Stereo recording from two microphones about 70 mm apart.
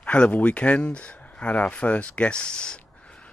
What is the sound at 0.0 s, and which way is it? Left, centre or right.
Speech, centre.